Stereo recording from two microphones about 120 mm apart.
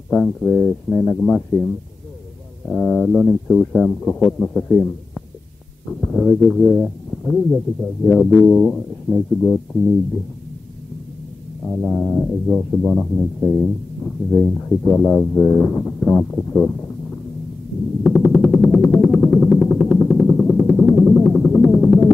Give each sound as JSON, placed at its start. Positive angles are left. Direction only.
{"t": 0.4, "sound": "music", "side_deg": 5}
{"t": 2.7, "sound": "music", "side_deg": 10}
{"t": 11.7, "sound": "music", "side_deg": 5}
{"t": 18.0, "sound": "music", "side_deg": 10}